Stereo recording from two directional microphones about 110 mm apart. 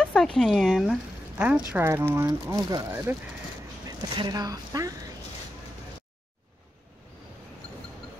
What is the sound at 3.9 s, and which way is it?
Speech, 40° right (ahead or behind).